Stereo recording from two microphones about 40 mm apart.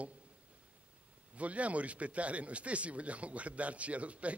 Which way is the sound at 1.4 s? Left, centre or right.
Right.